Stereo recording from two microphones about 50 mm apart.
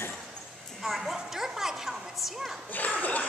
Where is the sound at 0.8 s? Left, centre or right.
Centre.